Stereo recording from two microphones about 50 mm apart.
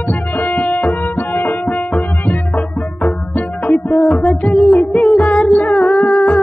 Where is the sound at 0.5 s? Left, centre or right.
Left.